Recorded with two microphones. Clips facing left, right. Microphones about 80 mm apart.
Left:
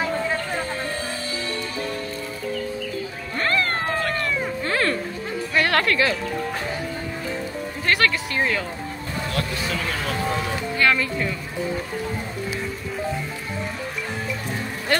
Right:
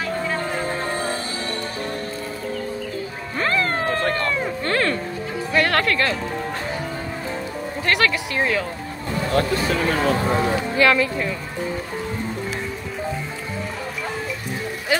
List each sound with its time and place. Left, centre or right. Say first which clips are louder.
3.3 s music: right 1 dB; centre
7.8 s speech: right 1 dB; centre
9.3 s speech: right 8 dB; right
10.8 s speech: right 3 dB; centre
14.9 s music: right 1 dB; centre